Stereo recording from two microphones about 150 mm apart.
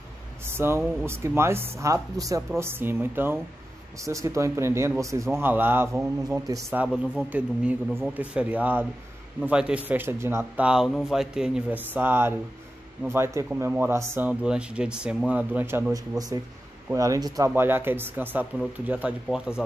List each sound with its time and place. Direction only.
0.5 s speech: 15° right (ahead or behind)
6.8 s speech: 5° right (ahead or behind)
15.9 s speech: 25° right (ahead or behind); by 19.6 s 5° right (ahead or behind)